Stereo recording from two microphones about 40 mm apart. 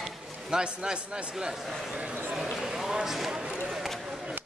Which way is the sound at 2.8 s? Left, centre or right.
Centre.